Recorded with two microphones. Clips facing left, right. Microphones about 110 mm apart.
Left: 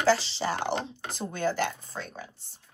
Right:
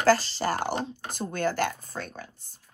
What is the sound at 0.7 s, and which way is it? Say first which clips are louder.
Speech: right 1 dB; 40° right (ahead or behind).